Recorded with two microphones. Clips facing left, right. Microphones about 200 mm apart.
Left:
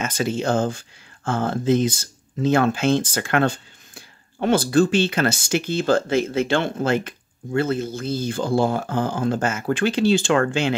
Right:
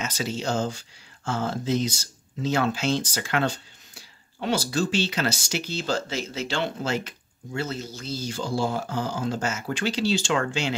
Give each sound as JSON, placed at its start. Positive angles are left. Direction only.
{"t": 0.0, "sound": "speech", "side_deg": 55}